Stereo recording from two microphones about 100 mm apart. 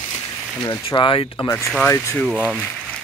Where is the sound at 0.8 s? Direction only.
65° left (ahead or behind).